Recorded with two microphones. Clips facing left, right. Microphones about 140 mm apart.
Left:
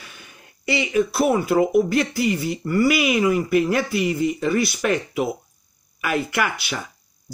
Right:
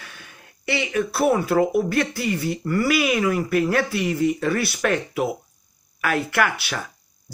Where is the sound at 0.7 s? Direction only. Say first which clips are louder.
Left 3 dB; 5° left (ahead or behind).